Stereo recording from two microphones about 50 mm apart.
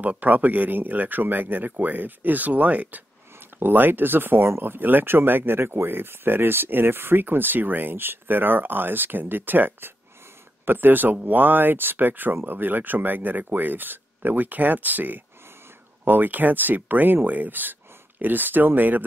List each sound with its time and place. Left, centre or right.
0.0 s speech: right